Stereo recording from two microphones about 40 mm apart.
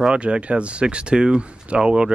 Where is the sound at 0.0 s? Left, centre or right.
Right.